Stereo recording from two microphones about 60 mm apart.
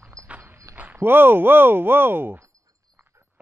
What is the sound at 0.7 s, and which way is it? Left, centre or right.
Speech, right.